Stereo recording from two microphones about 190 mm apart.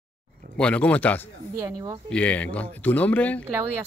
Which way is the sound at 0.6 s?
5° left (ahead or behind).